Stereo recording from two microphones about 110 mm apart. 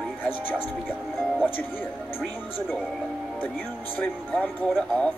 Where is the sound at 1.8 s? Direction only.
20° left (ahead or behind).